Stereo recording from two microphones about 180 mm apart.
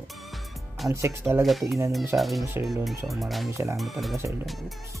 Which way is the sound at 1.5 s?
Centre (ahead or behind).